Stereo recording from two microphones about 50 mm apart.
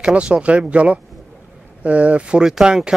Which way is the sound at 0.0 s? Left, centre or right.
Right.